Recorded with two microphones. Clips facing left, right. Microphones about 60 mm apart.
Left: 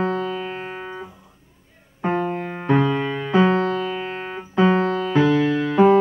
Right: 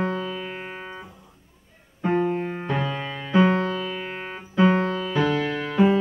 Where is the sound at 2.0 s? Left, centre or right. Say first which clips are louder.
Even; left.